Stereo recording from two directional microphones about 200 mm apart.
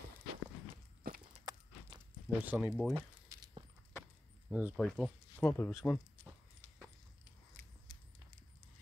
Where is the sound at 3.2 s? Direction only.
20° right (ahead or behind).